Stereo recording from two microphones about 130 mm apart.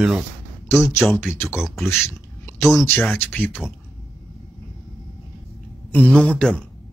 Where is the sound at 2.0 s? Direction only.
20° left (ahead or behind).